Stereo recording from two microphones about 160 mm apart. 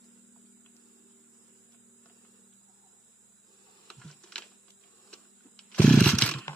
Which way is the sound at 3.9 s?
5° left (ahead or behind).